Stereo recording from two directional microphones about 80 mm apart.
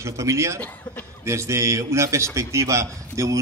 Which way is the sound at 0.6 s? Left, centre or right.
Left.